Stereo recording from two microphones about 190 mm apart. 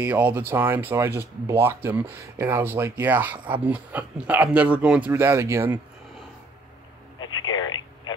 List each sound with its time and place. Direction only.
0.0 s speech: 10° right (ahead or behind)
7.2 s telephone: 25° left (ahead or behind)